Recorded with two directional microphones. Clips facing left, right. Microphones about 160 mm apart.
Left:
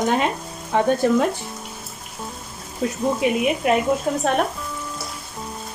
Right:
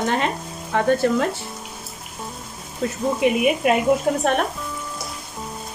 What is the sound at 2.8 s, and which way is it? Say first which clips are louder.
Speech: right 1 dB; centre (ahead or behind).